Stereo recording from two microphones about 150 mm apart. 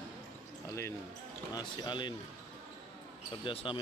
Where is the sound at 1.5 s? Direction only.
30° left (ahead or behind).